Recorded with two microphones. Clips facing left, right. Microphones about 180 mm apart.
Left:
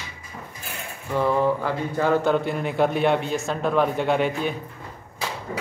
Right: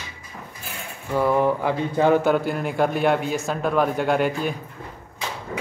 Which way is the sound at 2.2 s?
5° right (ahead or behind).